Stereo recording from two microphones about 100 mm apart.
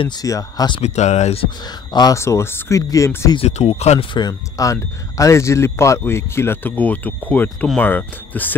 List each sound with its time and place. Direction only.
0.2 s speech: 35° left (ahead or behind)
0.7 s speech: 85° left
1.9 s speech: 45° left (ahead or behind)
2.1 s speech: 25° left (ahead or behind)
3.3 s speech: 85° left
4.1 s speech: 45° left (ahead or behind); by 8.5 s 20° left (ahead or behind)